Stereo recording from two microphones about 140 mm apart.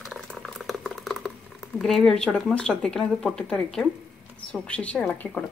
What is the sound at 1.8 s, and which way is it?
A woman's voice, 5° left (ahead or behind).